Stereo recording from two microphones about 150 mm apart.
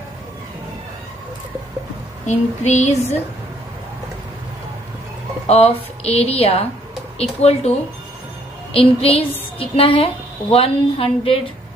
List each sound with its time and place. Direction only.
2.2 s a woman's voice: 50° left (ahead or behind)
5.5 s a woman's voice: 45° left (ahead or behind)
8.7 s a woman's voice: 40° left (ahead or behind)